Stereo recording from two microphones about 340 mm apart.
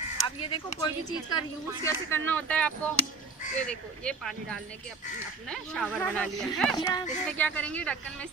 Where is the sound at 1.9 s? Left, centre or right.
Centre.